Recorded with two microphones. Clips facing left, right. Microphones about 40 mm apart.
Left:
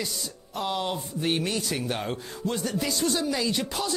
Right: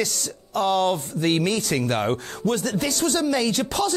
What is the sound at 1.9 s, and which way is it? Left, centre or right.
Speech, right.